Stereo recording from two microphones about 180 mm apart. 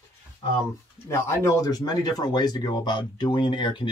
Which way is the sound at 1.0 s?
15° left (ahead or behind).